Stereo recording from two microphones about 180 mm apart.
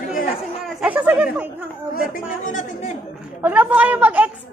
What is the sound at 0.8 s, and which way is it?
Speech, 10° right (ahead or behind).